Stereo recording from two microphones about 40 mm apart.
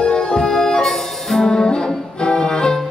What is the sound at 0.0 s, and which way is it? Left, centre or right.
Music, left.